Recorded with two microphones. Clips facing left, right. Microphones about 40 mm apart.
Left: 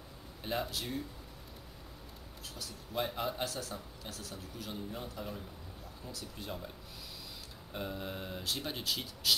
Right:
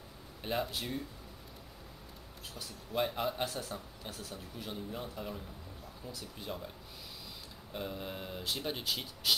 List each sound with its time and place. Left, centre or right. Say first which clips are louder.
0.4 s speech: right 1 dB; centre
2.9 s speech: right 2 dB; centre
3.4 s speech: right 1 dB; right
4.6 s a man's voice: right 1 dB; centre
6.4 s speech: right 1 dB; centre
7.7 s speech: even; centre